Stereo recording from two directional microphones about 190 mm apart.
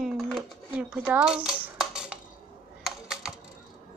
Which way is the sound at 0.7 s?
5° right (ahead or behind).